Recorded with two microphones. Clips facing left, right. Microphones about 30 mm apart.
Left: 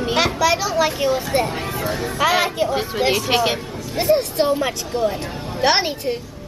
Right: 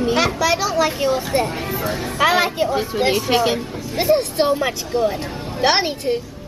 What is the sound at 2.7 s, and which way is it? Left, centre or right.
Speech, centre.